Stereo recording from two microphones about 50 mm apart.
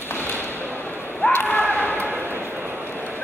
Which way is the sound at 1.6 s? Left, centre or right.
Left.